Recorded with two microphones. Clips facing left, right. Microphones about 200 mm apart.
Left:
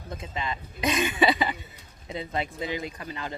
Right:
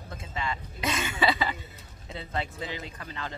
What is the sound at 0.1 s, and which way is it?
Speech, 20° left (ahead or behind).